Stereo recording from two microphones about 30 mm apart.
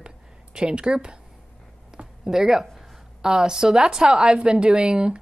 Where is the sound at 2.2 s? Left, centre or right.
Centre.